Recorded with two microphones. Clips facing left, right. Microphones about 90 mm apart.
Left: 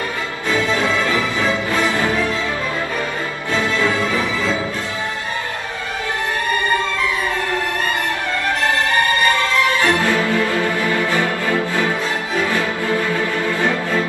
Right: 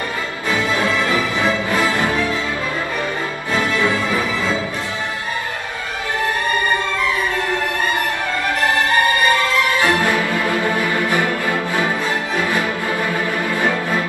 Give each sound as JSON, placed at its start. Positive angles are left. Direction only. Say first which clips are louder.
{"t": 9.8, "sound": "music", "louder": "even", "side_deg": -15}